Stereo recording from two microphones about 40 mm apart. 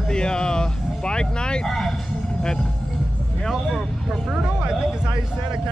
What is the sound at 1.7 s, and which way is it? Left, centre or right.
Vehicle, centre.